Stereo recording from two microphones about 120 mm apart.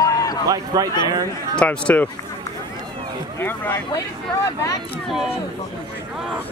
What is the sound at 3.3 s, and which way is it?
Speech, 20° left (ahead or behind).